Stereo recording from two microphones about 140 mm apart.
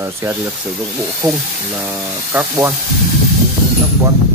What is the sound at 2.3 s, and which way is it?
Speech, 15° right (ahead or behind).